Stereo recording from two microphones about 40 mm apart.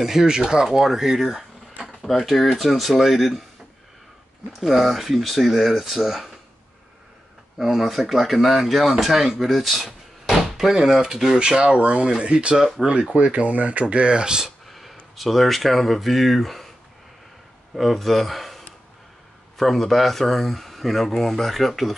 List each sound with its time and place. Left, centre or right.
0.0 s speech: centre
1.8 s a sound: centre
2.0 s speech: centre
4.5 s speech: centre
7.5 s speech: centre
13.1 s speech: right; by 14.5 s centre
14.7 s a sound: centre
15.1 s speech: centre
17.7 s speech: centre